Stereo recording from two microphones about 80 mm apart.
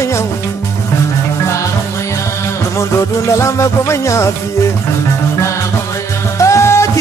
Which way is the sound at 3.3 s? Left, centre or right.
Left.